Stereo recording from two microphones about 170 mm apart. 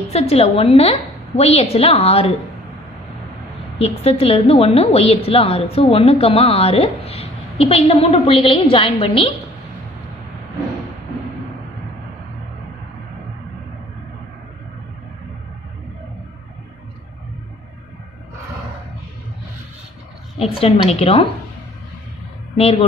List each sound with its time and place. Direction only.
0.1 s a woman's voice: 40° left (ahead or behind)
3.8 s a woman's voice: 35° left (ahead or behind)
20.3 s a woman's voice: 35° left (ahead or behind)
22.6 s a woman's voice: 35° left (ahead or behind)